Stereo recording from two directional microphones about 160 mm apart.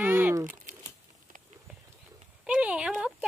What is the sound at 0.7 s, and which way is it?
Crumpling, 50° right (ahead or behind).